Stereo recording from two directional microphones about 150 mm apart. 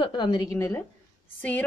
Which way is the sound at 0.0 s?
30° left (ahead or behind).